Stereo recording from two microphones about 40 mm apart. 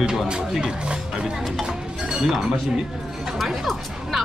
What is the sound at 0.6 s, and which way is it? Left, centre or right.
Speech, right.